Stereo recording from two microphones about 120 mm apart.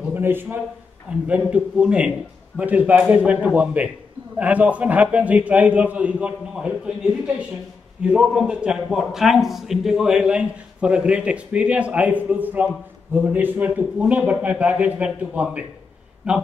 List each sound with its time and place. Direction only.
0.1 s a man's voice: 15° right (ahead or behind)
8.0 s a man's voice: 5° right (ahead or behind)